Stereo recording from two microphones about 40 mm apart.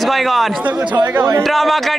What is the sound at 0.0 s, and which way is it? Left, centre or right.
A man's voice, centre.